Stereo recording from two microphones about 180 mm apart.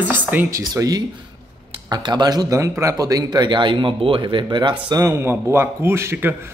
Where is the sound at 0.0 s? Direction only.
10° right (ahead or behind).